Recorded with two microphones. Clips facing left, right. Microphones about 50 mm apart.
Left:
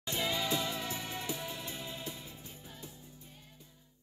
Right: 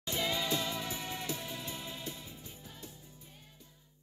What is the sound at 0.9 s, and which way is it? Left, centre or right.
Music, left.